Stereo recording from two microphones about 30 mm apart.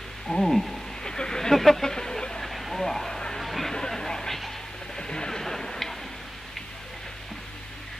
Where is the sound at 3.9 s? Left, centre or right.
Centre.